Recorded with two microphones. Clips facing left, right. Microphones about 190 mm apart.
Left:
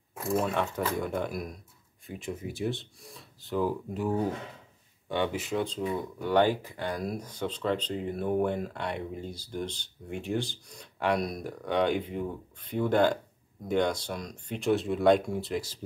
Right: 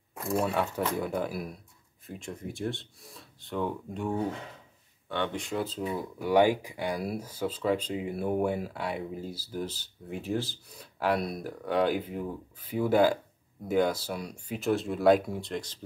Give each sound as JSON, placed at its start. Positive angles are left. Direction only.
{"t": 0.1, "sound": "speech", "side_deg": 0}